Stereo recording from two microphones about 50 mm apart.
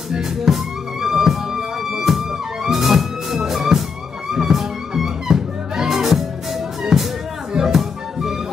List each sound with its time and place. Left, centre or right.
0.1 s music: centre